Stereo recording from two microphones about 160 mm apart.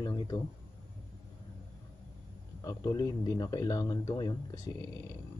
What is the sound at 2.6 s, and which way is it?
Speech, 20° left (ahead or behind).